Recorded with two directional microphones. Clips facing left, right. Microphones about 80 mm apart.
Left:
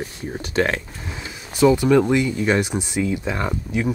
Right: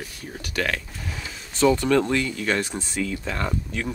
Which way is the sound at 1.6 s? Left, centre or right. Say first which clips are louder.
Left 4 dB; centre.